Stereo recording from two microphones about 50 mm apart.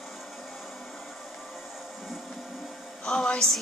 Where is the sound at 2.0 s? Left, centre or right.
Centre.